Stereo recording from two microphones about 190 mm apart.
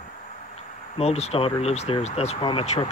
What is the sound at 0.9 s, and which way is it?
Speech, 35° left (ahead or behind).